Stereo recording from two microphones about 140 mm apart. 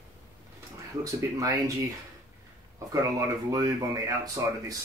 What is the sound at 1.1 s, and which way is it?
Speech, 25° right (ahead or behind).